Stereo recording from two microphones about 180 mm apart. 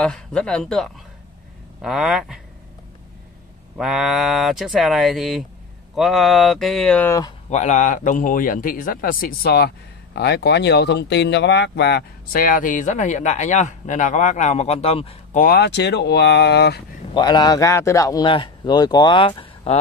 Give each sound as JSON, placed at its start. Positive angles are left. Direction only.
{"t": 0.0, "sound": "speech", "side_deg": 5}
{"t": 3.7, "sound": "speech", "side_deg": 0}
{"t": 7.4, "sound": "a man's voice", "side_deg": 40}
{"t": 15.3, "sound": "speech", "side_deg": 60}
{"t": 17.1, "sound": "speech", "side_deg": 25}